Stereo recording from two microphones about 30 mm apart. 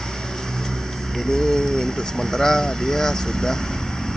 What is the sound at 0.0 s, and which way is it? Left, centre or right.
Speech, centre.